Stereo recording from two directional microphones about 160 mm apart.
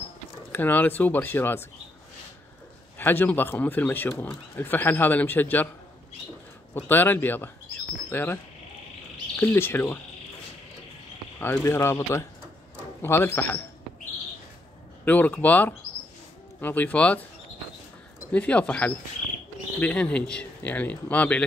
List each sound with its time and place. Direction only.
0.5 s speech: 10° left (ahead or behind)
3.0 s speech: 10° left (ahead or behind)
6.7 s speech: 10° left (ahead or behind)
9.4 s speech: 15° left (ahead or behind)
11.3 s speech: 15° left (ahead or behind)
15.0 s speech: 10° left (ahead or behind)
18.3 s speech: 10° left (ahead or behind)